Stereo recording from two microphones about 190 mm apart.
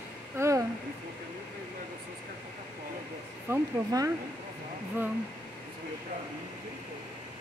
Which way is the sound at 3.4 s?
15° right (ahead or behind).